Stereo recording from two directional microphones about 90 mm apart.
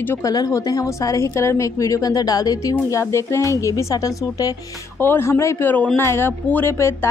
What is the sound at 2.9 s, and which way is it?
A woman's voice, 35° left (ahead or behind).